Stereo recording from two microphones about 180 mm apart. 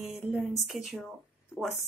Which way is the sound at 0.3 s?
Centre (ahead or behind).